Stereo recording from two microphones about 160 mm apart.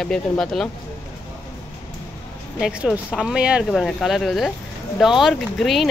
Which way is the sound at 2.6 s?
5° right (ahead or behind).